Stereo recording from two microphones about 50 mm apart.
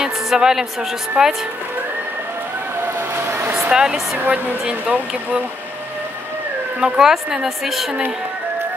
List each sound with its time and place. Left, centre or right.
0.1 s a woman's voice: centre
1.2 s speech: right
3.0 s a sound: right
3.7 s speech: centre
4.2 s a woman's voice: right
4.6 s speech: right
6.8 s speech: centre